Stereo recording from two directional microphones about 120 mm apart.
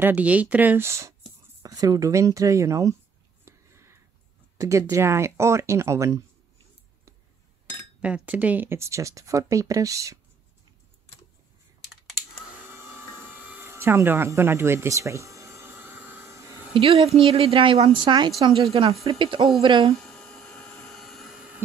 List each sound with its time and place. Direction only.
0.0 s speech: 10° right (ahead or behind)
3.4 s a sound: 20° right (ahead or behind)
4.6 s speech: 25° right (ahead or behind)
8.0 s speech: 10° right (ahead or behind); by 10.1 s 25° right (ahead or behind)
11.9 s typing: centre (ahead or behind)
12.7 s a sound: 20° right (ahead or behind)
16.7 s a woman's voice: 55° right (ahead or behind)
17.9 s speech: 40° right (ahead or behind)
18.4 s a woman's voice: 50° right (ahead or behind)
20.0 s a sound: 5° left (ahead or behind)